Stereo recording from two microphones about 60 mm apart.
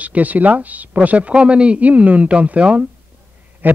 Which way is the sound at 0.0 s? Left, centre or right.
Right.